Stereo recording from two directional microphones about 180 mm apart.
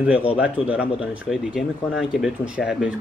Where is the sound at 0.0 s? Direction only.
5° right (ahead or behind).